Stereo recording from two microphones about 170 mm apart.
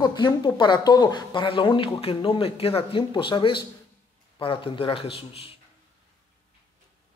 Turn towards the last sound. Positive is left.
turn(degrees=35)  # may be behind; listen again after turning